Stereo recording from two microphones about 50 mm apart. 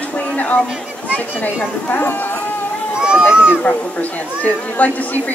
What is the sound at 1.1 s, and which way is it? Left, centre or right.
Speech, left.